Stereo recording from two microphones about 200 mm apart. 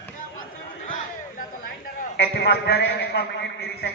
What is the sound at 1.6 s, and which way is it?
A man's voice, 50° left (ahead or behind).